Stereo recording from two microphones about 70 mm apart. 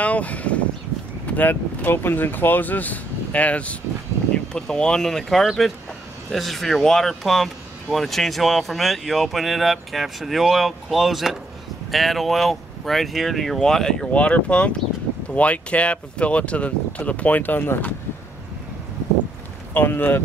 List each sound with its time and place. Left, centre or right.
0.0 s speech: left
19.7 s speech: left